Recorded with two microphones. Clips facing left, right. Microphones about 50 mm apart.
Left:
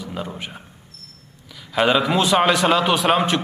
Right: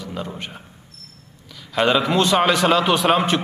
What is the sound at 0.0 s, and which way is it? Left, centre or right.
A man's voice, centre.